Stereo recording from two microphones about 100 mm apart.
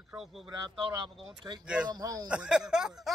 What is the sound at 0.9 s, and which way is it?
Speech, 45° right (ahead or behind).